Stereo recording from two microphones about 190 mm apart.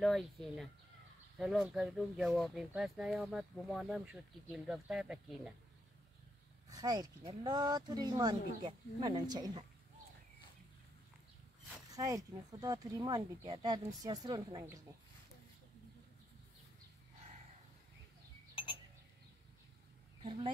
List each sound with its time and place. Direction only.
0.0 s speech: centre (ahead or behind)
6.7 s speech: 20° right (ahead or behind)
11.9 s speech: 20° right (ahead or behind)
18.5 s clock: 25° left (ahead or behind)